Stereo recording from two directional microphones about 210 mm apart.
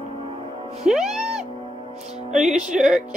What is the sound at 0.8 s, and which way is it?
Music, centre (ahead or behind).